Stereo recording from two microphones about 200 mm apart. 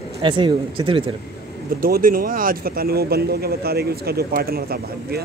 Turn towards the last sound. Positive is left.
turn(degrees=-50)  # may be behind; listen again after turning